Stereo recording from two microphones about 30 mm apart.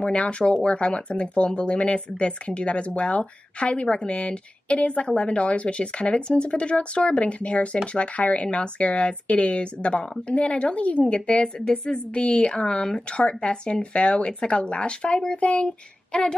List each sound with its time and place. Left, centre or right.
0.0 s speech: left